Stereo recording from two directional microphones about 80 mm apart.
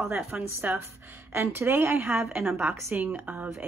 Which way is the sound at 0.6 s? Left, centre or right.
Right.